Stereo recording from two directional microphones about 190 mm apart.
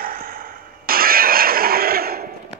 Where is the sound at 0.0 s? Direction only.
50° right (ahead or behind).